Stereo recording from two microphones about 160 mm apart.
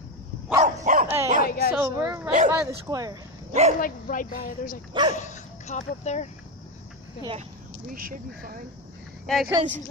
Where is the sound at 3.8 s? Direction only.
55° left (ahead or behind).